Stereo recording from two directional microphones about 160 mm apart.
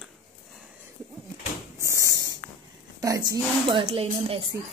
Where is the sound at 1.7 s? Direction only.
20° right (ahead or behind).